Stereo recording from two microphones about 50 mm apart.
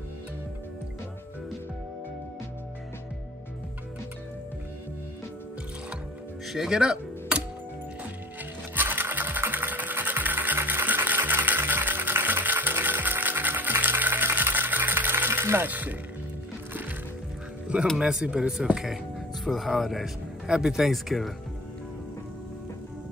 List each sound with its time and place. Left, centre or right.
6.4 s speech: centre
7.3 s music: right
8.7 s sewing machine: right
15.7 s speech: right
17.9 s speech: centre
19.4 s speech: centre
20.4 s speech: centre
20.9 s speech: centre